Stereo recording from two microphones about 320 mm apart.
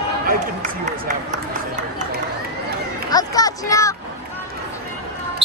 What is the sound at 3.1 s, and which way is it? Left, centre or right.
Music, centre.